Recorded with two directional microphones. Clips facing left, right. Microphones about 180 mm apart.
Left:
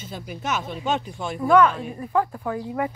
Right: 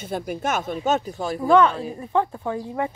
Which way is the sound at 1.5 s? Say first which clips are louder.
Even; 30° right (ahead or behind).